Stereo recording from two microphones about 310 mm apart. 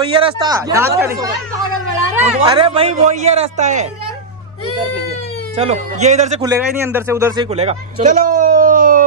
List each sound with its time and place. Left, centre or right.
0.1 s a man's voice: centre
5.6 s a man's voice: right
7.5 s speech: right